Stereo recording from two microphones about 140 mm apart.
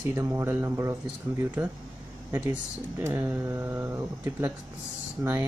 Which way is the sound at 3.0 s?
15° right (ahead or behind).